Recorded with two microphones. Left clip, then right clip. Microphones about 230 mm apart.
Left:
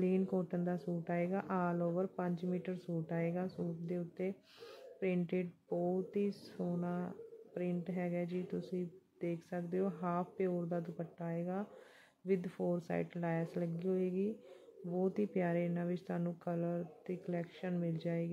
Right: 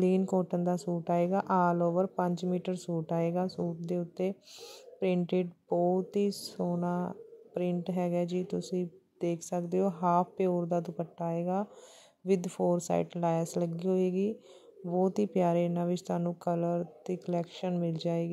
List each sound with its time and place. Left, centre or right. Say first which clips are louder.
0.0 s speech: right 7 dB; right